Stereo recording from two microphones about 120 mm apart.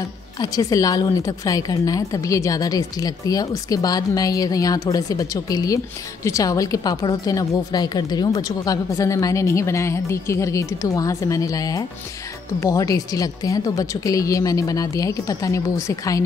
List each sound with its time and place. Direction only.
0.4 s a woman's voice: 30° left (ahead or behind)